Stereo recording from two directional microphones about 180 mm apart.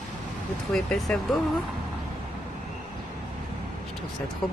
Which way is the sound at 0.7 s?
Centre (ahead or behind).